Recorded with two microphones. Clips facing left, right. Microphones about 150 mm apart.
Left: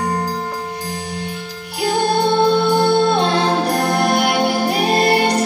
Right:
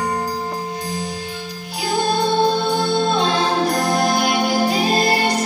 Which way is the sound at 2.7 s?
60° left (ahead or behind).